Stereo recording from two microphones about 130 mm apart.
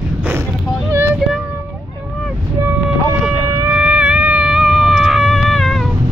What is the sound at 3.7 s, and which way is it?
Cat, 10° right (ahead or behind).